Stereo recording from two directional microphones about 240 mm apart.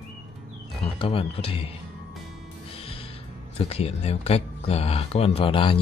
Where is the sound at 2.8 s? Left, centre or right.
Left.